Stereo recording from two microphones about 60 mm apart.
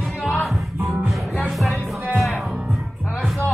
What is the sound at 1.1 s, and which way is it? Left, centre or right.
Music, centre.